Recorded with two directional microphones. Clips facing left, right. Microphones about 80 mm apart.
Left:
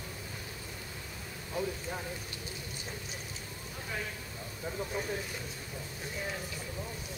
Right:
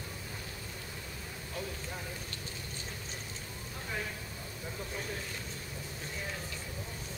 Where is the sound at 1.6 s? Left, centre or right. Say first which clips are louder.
Left 6 dB; centre.